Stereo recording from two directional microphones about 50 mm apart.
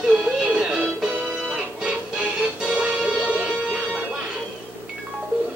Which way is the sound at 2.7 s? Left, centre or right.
Right.